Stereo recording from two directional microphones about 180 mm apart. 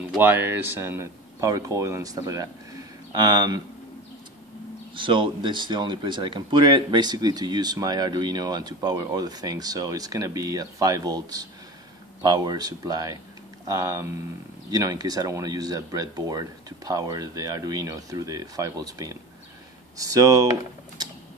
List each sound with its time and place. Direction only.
0.0 s speech: 10° right (ahead or behind)
4.9 s speech: 25° right (ahead or behind)